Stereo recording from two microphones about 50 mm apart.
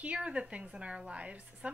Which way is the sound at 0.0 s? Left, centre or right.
Right.